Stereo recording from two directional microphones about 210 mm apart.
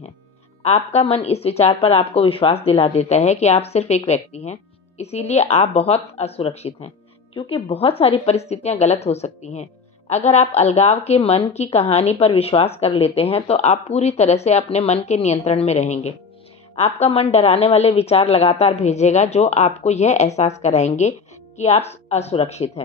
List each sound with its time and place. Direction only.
0.6 s a woman's voice: 30° left (ahead or behind)